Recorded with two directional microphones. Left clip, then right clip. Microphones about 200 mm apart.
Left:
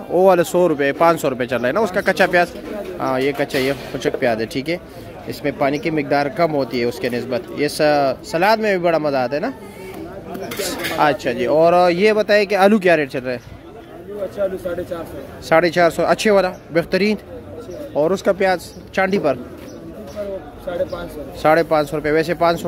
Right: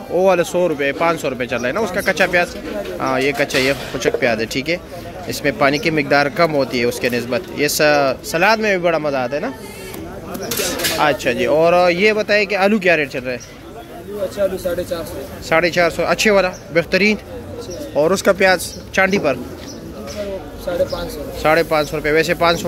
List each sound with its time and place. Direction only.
0.1 s speech: 25° left (ahead or behind)
10.8 s speech: 20° left (ahead or behind)
15.5 s speech: 25° left (ahead or behind)
21.4 s speech: 20° left (ahead or behind)